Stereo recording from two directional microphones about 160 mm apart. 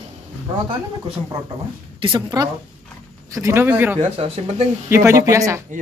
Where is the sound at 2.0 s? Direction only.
30° right (ahead or behind).